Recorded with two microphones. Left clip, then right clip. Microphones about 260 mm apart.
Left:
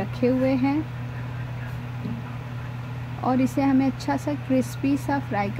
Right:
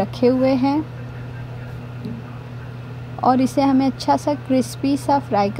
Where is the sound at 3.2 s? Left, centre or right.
Centre.